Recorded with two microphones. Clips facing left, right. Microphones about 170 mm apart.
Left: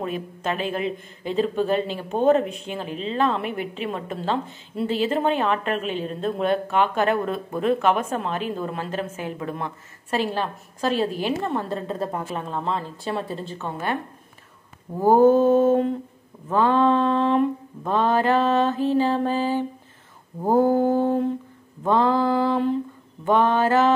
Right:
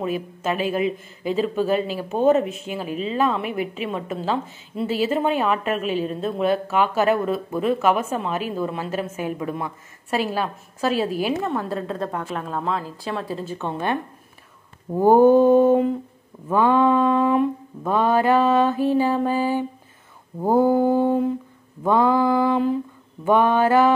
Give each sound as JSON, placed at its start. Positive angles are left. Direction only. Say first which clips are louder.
{"t": 0.0, "sound": "speech", "louder": "right 3 dB", "side_deg": -5}
{"t": 13.6, "sound": "speech", "louder": "right 3 dB", "side_deg": -20}
{"t": 15.0, "sound": "speech", "louder": "right 2 dB", "side_deg": -15}